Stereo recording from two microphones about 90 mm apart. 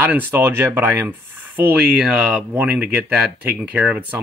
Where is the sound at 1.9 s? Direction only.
10° right (ahead or behind).